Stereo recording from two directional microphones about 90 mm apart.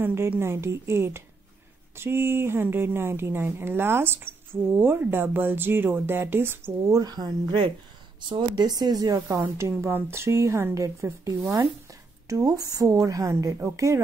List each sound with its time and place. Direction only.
0.0 s speech: 25° right (ahead or behind)
7.0 s speech: 50° right (ahead or behind)
9.4 s a woman's voice: 30° right (ahead or behind)